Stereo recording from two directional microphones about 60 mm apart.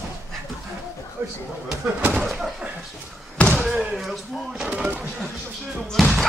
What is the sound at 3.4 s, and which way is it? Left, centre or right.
Slam, left.